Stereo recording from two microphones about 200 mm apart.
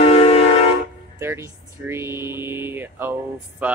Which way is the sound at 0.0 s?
30° left (ahead or behind).